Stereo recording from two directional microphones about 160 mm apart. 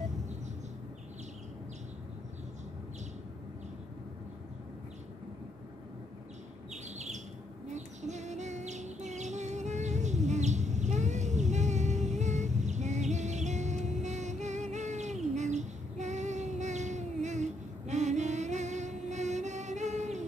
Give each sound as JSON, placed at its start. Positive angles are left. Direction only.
{"t": 7.7, "sound": "bird", "side_deg": -45}